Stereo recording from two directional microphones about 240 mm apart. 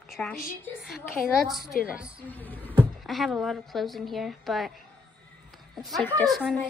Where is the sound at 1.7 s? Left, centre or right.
Left.